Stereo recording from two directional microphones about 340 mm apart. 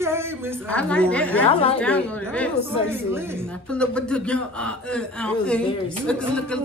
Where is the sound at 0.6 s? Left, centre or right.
Centre.